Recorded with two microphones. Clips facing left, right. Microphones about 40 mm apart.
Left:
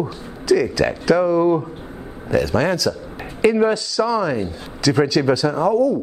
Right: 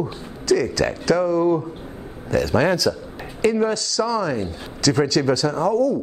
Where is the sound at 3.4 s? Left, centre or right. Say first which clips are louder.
Left 3 dB; centre.